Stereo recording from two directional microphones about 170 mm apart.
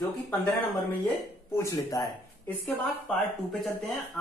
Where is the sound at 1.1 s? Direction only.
15° left (ahead or behind).